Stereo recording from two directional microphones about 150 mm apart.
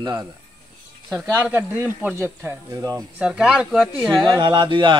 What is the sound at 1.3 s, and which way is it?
Speech, 10° right (ahead or behind).